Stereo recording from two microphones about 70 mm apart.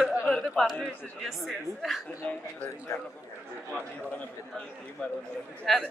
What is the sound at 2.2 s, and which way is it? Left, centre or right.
Speech, centre.